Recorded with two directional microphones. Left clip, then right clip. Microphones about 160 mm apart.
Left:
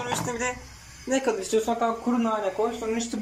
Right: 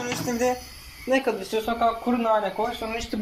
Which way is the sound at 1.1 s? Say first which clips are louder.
Right 1 dB; 5° left (ahead or behind).